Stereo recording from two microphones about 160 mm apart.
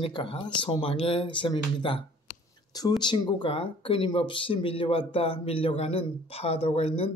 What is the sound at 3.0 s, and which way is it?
Speech, 30° left (ahead or behind).